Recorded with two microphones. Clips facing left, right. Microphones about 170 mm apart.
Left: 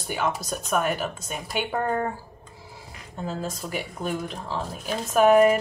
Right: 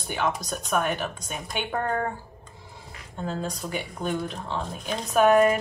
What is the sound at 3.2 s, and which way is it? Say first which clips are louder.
Speech: even; 5° left (ahead or behind).